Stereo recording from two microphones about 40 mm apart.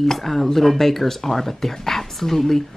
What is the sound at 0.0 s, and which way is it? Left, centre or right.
Speech, centre.